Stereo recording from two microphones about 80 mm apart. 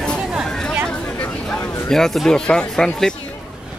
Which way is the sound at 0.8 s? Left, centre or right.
Centre.